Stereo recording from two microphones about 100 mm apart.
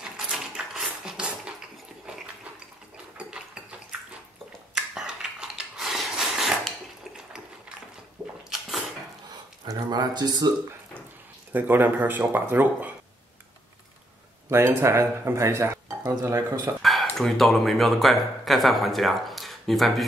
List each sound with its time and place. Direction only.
0.0 s mechanisms: 5° right (ahead or behind)
3.2 s ratchet: 10° right (ahead or behind)
4.7 s a sound: 5° right (ahead or behind)
8.5 s a sound: centre (ahead or behind)
9.7 s speech: 45° right (ahead or behind)
11.5 s speech: 20° right (ahead or behind)
14.5 s speech: 25° right (ahead or behind)
16.8 s speech: centre (ahead or behind)